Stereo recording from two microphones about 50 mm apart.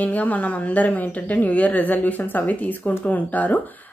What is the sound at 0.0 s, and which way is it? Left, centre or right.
A woman's voice, left.